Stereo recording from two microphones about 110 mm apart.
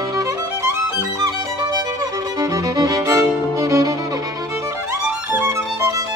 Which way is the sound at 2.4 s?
30° right (ahead or behind).